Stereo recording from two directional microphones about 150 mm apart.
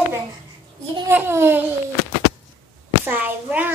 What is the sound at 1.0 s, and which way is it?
Speech, 15° right (ahead or behind).